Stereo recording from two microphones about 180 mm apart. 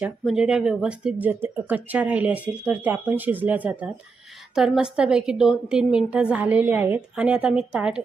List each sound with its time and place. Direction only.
0.0 s a woman's voice: 5° right (ahead or behind)